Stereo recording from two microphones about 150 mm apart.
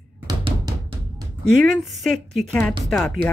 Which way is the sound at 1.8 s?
Centre (ahead or behind).